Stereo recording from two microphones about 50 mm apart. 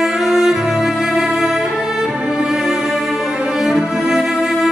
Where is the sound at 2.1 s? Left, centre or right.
Centre.